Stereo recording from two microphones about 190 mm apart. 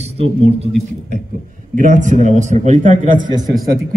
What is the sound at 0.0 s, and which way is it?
Speech, 35° right (ahead or behind).